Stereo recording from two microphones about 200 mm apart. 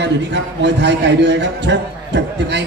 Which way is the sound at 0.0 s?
60° right (ahead or behind).